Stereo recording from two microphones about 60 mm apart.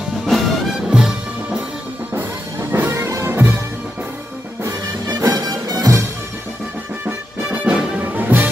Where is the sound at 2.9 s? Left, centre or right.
Right.